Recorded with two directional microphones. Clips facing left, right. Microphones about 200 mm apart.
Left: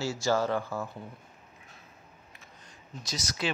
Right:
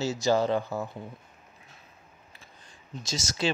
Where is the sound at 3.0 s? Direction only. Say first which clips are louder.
Right 3 dB; 25° right (ahead or behind).